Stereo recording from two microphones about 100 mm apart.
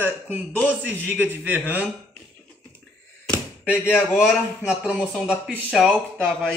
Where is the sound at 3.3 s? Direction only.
20° left (ahead or behind).